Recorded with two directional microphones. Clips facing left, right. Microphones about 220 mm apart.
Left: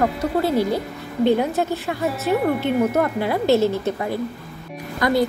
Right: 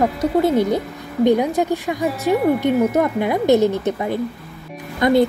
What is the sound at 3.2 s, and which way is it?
Speech, 15° right (ahead or behind).